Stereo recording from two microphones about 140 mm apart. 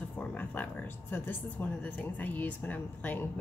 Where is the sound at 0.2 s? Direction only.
10° left (ahead or behind).